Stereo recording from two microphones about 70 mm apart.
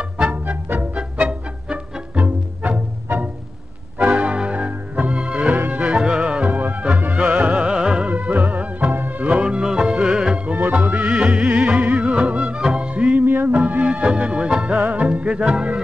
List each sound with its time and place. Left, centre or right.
0.0 s music: centre
8.1 s music: right